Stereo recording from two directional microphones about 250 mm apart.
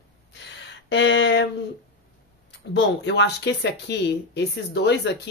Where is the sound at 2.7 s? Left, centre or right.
Left.